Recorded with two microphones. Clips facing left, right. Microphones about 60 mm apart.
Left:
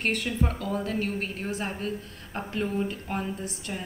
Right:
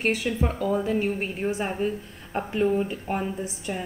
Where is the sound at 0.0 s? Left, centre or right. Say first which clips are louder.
Right 3 dB; centre.